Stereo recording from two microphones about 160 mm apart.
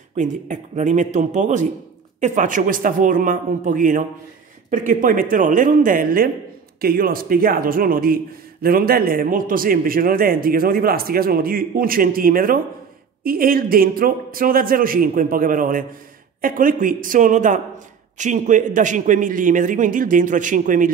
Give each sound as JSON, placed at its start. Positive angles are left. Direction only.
{"t": 0.1, "sound": "a man's voice", "side_deg": -50}